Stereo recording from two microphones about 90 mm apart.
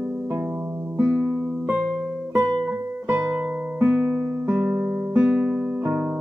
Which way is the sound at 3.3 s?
15° right (ahead or behind).